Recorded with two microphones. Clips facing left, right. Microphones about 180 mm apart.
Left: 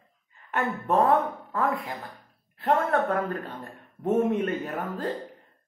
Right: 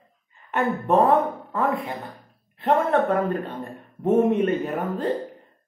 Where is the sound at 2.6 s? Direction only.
20° right (ahead or behind).